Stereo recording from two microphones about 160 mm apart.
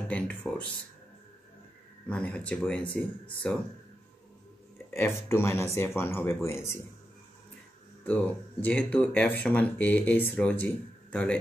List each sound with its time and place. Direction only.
0.1 s speech: 5° left (ahead or behind)
2.0 s speech: 10° left (ahead or behind)
4.9 s speech: 15° left (ahead or behind)
8.0 s speech: 10° left (ahead or behind)